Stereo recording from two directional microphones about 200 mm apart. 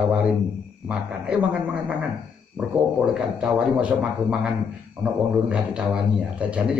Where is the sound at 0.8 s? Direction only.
5° right (ahead or behind).